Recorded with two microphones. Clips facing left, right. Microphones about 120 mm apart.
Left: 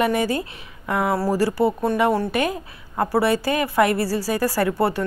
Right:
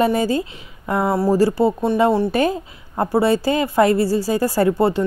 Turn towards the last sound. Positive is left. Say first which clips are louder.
# right 4 dB
turn(degrees=-20)  # may be behind; listen again after turning